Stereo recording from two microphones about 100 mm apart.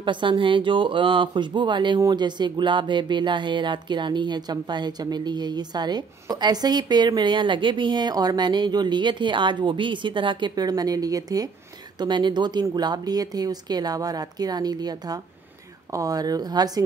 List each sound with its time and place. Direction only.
0.0 s a woman's voice: 55° right (ahead or behind)
10.5 s speech: 40° right (ahead or behind)
12.0 s a woman's voice: 50° right (ahead or behind)